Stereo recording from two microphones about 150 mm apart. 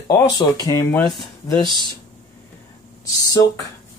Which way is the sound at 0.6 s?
25° left (ahead or behind).